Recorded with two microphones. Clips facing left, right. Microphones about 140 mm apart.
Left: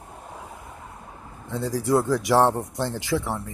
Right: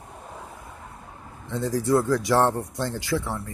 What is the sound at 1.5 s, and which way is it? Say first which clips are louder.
Speech: even; 10° left (ahead or behind).